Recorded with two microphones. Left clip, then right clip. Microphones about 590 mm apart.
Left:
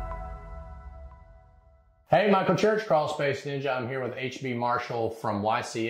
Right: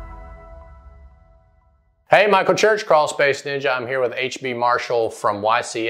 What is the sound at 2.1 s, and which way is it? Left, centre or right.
Speech, right.